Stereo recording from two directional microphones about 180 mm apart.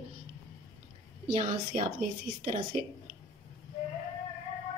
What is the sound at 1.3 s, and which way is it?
Speech, 40° right (ahead or behind).